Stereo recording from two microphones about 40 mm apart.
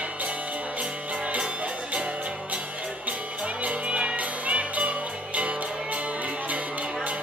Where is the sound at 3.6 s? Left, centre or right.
Right.